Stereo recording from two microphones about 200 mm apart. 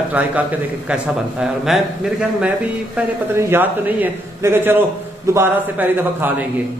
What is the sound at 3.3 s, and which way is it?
A man's voice, 10° right (ahead or behind).